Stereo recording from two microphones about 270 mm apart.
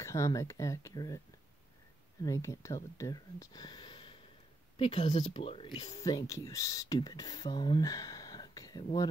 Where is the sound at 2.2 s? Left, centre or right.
Centre.